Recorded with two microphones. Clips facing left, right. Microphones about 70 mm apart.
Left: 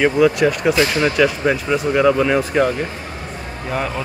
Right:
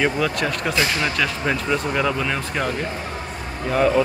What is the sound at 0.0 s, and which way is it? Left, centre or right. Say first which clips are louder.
Speech: left 7 dB; centre.